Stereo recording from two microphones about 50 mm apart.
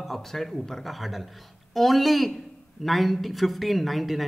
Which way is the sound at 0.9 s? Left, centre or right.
Centre.